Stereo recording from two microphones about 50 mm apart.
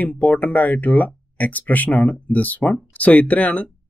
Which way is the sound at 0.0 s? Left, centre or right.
Left.